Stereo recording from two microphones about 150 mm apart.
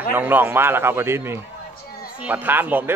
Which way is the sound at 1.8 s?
85° left.